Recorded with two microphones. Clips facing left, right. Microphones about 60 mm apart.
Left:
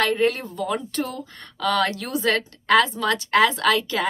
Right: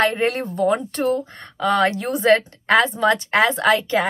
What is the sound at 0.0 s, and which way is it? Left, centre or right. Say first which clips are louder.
Speech: right 2 dB; right.